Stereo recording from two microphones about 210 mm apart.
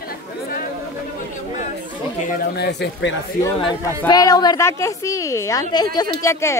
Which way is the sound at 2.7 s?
55° left (ahead or behind).